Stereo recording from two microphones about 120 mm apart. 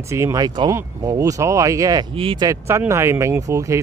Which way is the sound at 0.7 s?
30° right (ahead or behind).